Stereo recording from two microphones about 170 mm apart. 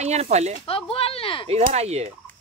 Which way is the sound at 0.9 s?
35° left (ahead or behind).